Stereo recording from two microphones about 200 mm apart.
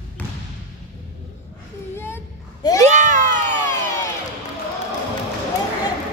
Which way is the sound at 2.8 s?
35° right (ahead or behind).